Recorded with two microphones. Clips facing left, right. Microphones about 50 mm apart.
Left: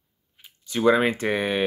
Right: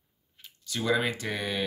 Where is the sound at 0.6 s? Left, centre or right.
Left.